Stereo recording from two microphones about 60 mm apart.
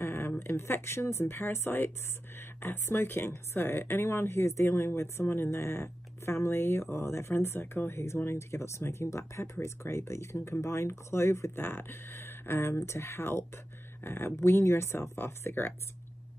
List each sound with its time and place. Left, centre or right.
0.0 s a sound: left
0.4 s speech: left
11.6 s speech: left